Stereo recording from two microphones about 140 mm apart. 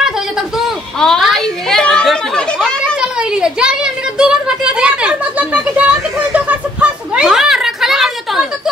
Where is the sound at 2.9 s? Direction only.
5° right (ahead or behind).